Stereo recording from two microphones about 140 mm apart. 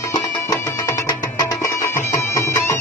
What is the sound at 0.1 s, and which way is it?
Music, 20° left (ahead or behind).